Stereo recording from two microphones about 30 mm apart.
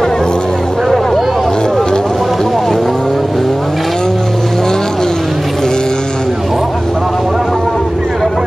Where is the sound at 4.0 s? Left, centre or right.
Centre.